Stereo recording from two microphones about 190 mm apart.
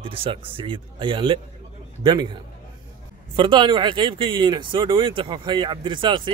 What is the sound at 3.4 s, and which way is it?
Speech, 25° right (ahead or behind).